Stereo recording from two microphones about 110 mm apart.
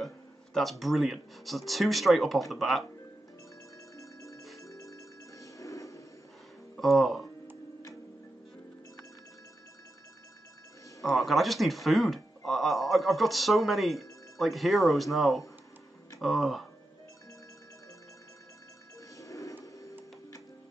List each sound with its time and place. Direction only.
0.6 s speech: centre (ahead or behind)
3.9 s music: 30° left (ahead or behind)
4.4 s music: centre (ahead or behind)
4.6 s music: 30° left (ahead or behind)
6.8 s speech: centre (ahead or behind)
11.0 s speech: centre (ahead or behind)
19.1 s a sound: 30° left (ahead or behind)